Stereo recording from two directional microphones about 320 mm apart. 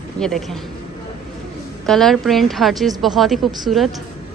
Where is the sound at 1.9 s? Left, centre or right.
Centre.